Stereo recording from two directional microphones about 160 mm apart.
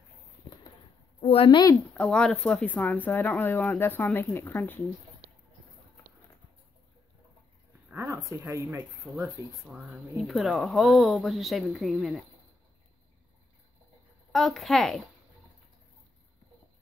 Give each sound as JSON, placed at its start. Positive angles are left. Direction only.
{"t": 1.2, "sound": "a woman's voice", "side_deg": 35}
{"t": 2.0, "sound": "speech", "side_deg": 5}
{"t": 7.9, "sound": "a sound", "side_deg": -15}
{"t": 9.0, "sound": "speech", "side_deg": 0}
{"t": 14.3, "sound": "speech", "side_deg": 0}